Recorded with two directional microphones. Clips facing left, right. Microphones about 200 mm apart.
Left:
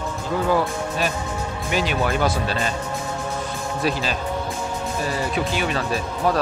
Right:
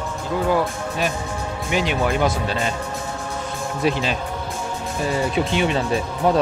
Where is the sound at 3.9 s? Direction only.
20° right (ahead or behind).